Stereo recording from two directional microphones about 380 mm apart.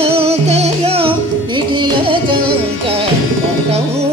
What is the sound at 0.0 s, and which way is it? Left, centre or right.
Music, centre.